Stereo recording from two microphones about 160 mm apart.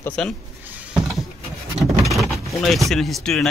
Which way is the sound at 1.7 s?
Centre (ahead or behind).